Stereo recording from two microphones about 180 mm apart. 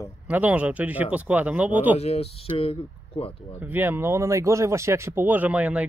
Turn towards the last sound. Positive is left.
turn(degrees=-5)  # may be behind; listen again after turning